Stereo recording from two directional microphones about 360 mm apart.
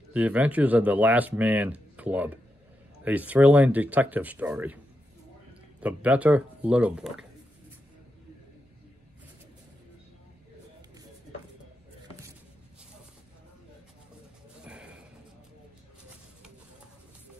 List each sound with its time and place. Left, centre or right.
0.1 s speech: centre
5.8 s speech: centre
14.6 s a sound: centre